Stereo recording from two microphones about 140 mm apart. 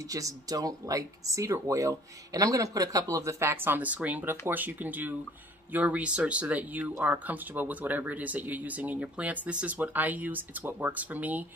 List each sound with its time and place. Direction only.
0.0 s speech: 25° right (ahead or behind)